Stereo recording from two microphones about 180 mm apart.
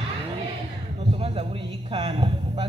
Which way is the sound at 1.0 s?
30° right (ahead or behind).